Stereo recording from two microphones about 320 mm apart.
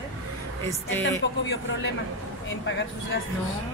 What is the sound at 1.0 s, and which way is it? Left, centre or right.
Speech, left.